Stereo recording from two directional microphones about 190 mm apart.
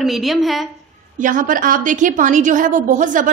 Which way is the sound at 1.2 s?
45° right (ahead or behind).